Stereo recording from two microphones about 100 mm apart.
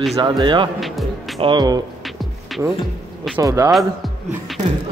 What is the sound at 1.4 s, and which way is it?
Speech, 50° right (ahead or behind).